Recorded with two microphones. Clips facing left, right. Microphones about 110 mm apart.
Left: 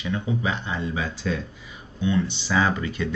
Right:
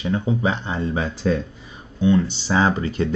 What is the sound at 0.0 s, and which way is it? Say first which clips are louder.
Speech: right 5 dB; 35° right (ahead or behind).